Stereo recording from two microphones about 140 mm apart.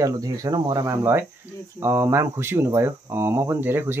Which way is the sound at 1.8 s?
20° right (ahead or behind).